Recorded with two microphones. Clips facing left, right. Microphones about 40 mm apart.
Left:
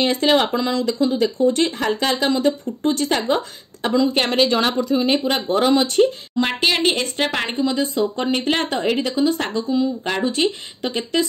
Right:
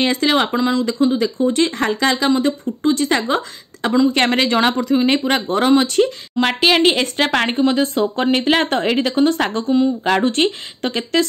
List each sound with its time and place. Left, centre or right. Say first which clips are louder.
0.0 s a woman's voice: right 2 dB; right
0.3 s speech: left 3 dB; right
0.6 s speech: right 3 dB; right
0.8 s speech: right 2 dB; right
4.4 s speech: right 2 dB; right
4.9 s speech: right 2 dB; right
6.4 s a woman's voice: right 5 dB; right
9.7 s speech: right 5 dB; right
10.0 s a woman's voice: right 4 dB; right